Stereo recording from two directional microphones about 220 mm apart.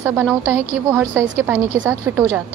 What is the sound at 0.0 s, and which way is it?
A woman's voice, 10° right (ahead or behind).